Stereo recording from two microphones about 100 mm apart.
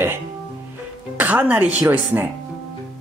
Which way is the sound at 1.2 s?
15° right (ahead or behind).